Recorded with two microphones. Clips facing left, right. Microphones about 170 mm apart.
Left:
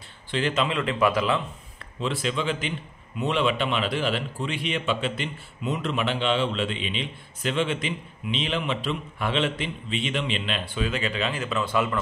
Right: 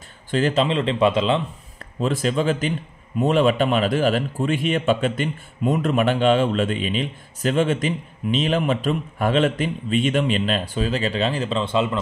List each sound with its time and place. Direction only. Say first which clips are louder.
0.3 s speech: right 6 dB; 40° right (ahead or behind)
2.0 s a man's voice: right 6 dB; 45° right (ahead or behind); by 12.0 s 25° right (ahead or behind)